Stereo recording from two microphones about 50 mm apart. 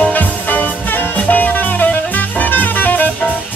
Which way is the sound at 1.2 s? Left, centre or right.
Left.